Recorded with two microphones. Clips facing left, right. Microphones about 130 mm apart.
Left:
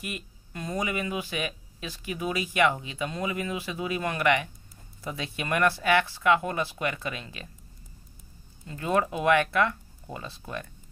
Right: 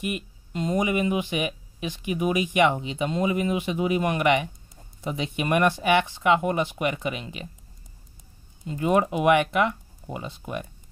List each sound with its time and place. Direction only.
0.0 s speech: 20° right (ahead or behind)
8.6 s speech: 20° right (ahead or behind)